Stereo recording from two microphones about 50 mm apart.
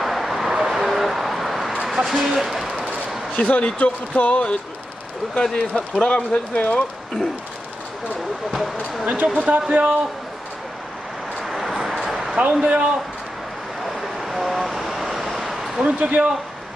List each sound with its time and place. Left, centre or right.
0.0 s vehicle: centre
1.9 s a sound: centre
3.3 s speech: left
5.3 s speech: centre
8.5 s speech: centre
9.0 s speech: right
11.4 s a sound: centre
12.6 s speech: right
13.8 s vehicle: centre
15.8 s speech: right